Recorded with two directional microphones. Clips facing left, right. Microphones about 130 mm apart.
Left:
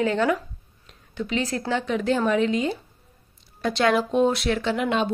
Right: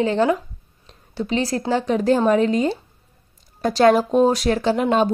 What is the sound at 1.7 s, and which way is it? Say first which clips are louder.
Speech: right 5 dB; 40° right (ahead or behind).